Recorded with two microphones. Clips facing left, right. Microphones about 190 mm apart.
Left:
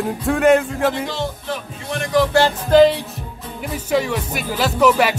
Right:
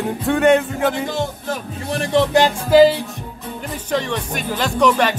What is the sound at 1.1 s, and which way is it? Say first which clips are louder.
Music: right 2 dB; 45° right (ahead or behind).